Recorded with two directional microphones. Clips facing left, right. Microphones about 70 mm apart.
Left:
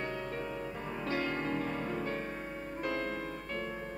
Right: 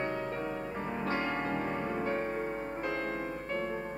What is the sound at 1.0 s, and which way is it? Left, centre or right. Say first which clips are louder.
Music: even; right.